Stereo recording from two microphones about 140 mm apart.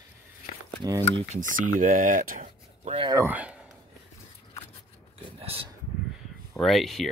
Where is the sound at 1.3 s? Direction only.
70° right (ahead or behind).